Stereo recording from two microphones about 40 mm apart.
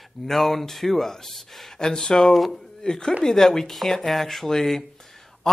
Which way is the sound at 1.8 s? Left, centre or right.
Centre.